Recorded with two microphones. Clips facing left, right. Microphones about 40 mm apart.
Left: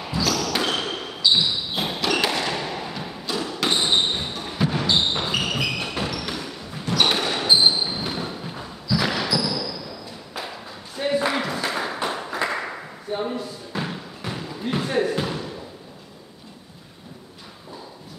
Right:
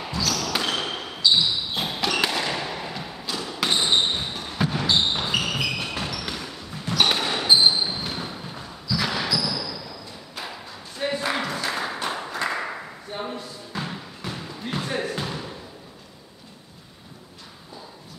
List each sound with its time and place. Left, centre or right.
0.1 s basketball bounce: centre
11.0 s applause: centre
13.1 s basketball bounce: centre